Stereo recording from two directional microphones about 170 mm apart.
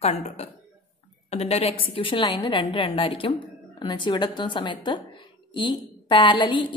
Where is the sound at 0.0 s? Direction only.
40° left (ahead or behind).